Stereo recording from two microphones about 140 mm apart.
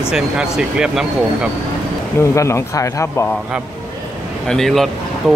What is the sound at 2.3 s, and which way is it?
Speech, 20° left (ahead or behind).